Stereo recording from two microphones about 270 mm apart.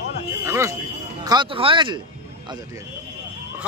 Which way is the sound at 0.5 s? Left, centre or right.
Centre.